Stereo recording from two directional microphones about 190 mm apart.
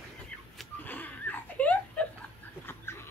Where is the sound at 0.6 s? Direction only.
10° left (ahead or behind).